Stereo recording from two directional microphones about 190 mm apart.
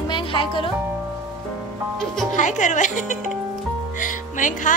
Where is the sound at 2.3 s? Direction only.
40° left (ahead or behind).